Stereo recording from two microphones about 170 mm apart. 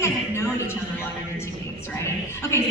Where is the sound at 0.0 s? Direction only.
15° left (ahead or behind).